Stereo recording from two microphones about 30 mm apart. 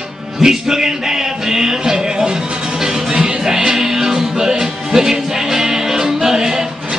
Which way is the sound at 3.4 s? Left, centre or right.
Right.